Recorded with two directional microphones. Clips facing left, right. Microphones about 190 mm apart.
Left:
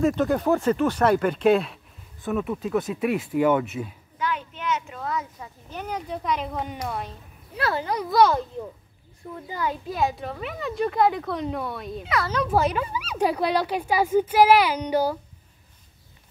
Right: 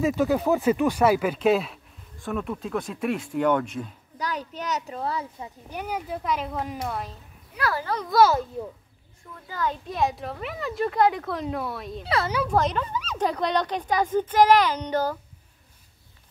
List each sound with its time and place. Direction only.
0.0 s speech: 5° right (ahead or behind)
4.2 s a child's voice: 40° right (ahead or behind)
5.4 s speech: 10° right (ahead or behind)
7.5 s speech: 25° left (ahead or behind)
8.1 s speech: 5° right (ahead or behind)
9.5 s speech: 10° left (ahead or behind)
12.0 s a child's voice: 30° right (ahead or behind)
12.4 s speech: 10° left (ahead or behind)